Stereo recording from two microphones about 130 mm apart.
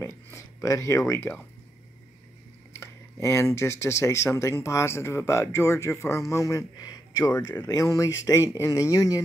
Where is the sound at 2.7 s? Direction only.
20° left (ahead or behind).